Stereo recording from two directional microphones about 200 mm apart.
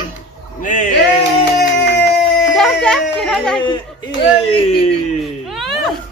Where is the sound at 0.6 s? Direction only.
40° left (ahead or behind).